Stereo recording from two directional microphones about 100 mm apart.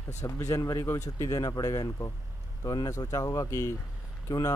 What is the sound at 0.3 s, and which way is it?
Speech, 30° left (ahead or behind).